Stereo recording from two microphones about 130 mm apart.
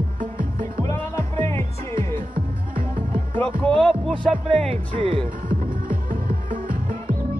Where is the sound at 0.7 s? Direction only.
25° left (ahead or behind).